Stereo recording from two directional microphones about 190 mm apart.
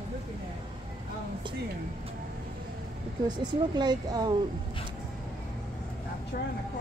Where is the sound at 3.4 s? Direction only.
25° right (ahead or behind).